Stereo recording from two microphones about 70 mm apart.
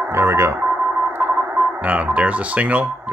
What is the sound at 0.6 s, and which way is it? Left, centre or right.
Radio, right.